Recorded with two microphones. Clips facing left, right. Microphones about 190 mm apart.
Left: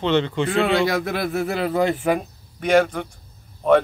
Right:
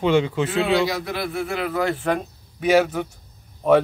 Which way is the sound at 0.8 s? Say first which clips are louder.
Left 3 dB; 50° left (ahead or behind).